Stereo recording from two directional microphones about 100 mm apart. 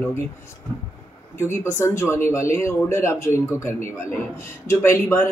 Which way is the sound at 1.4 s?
25° left (ahead or behind).